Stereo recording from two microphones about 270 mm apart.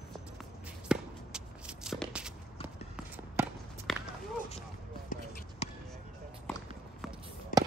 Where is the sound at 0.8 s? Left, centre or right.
Centre.